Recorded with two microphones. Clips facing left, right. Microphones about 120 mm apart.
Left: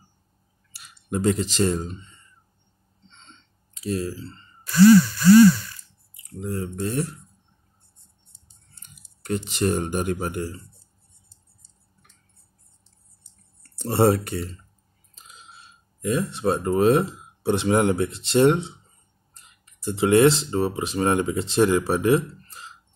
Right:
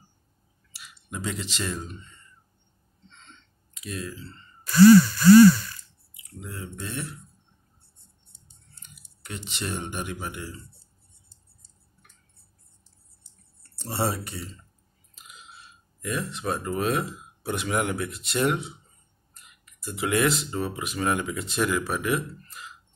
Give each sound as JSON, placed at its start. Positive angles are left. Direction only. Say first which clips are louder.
{"t": 0.7, "sound": "speech", "louder": "left 10 dB", "side_deg": 45}
{"t": 3.1, "sound": "a sound", "louder": "left 1 dB", "side_deg": 30}
{"t": 6.4, "sound": "speech", "louder": "left 9 dB", "side_deg": 40}
{"t": 9.2, "sound": "speech", "louder": "left 11 dB", "side_deg": 45}
{"t": 13.7, "sound": "speech", "louder": "left 9 dB", "side_deg": 55}
{"t": 15.1, "sound": "a sound", "louder": "left 1 dB", "side_deg": 30}
{"t": 16.0, "sound": "speech", "louder": "left 7 dB", "side_deg": 25}